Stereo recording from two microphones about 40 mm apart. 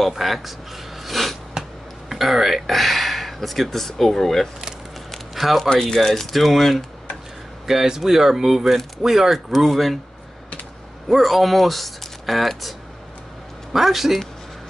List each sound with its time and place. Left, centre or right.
0.0 s speech: centre
1.0 s snort: centre
1.5 s speech: centre
5.1 s a sound: centre
5.7 s speech: centre
7.6 s speech: centre
11.1 s speech: centre
13.7 s speech: centre